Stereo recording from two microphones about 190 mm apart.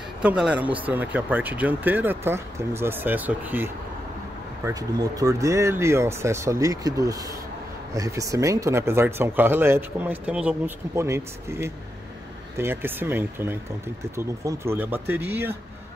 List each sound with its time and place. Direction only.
0.2 s speech: 5° right (ahead or behind)